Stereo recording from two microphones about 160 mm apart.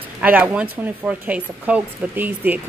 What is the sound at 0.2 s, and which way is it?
Speech, 10° right (ahead or behind).